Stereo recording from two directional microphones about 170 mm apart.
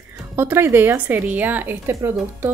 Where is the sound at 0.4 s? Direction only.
15° right (ahead or behind).